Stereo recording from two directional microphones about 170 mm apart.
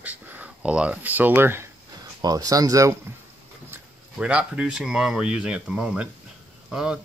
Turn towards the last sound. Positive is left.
turn(degrees=-5)  # may be behind; listen again after turning